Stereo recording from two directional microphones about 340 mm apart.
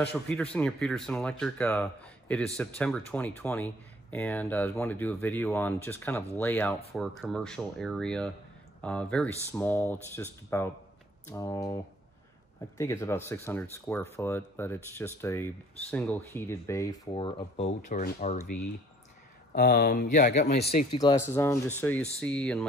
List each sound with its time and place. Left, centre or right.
0.1 s speech: centre; by 18.5 s left
19.5 s speech: left
20.9 s speech: centre